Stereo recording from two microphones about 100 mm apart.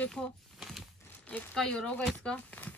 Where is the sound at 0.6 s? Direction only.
Centre (ahead or behind).